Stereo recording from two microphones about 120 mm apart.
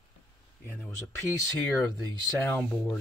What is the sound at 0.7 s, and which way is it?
Speech, 20° left (ahead or behind).